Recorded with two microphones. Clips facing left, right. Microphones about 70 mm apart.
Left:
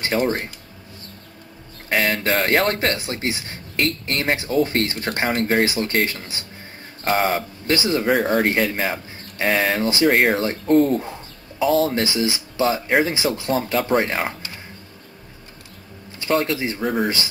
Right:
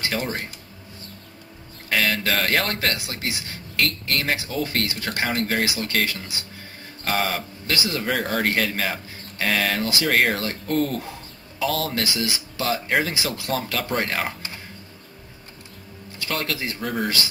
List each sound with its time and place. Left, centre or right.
0.0 s speech: left
1.9 s speech: left
8.1 s speech: centre
8.5 s speech: centre
16.2 s speech: left